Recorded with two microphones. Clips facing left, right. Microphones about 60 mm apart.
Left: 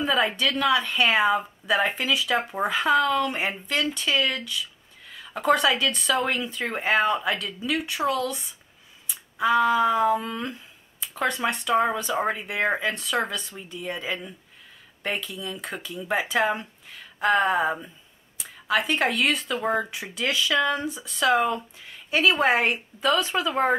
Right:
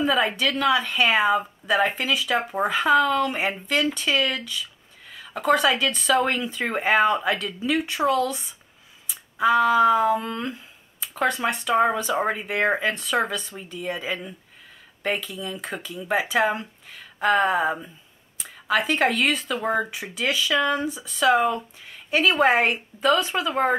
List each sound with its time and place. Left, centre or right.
0.0 s a woman's voice: centre
0.4 s a sound: centre
23.1 s speech: right